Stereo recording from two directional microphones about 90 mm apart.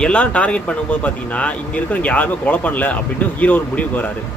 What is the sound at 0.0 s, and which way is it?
Speech, 10° left (ahead or behind).